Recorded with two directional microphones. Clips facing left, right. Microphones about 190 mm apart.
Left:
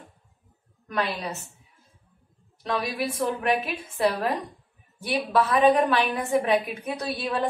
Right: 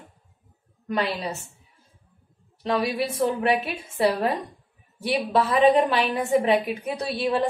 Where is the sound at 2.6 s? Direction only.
30° right (ahead or behind).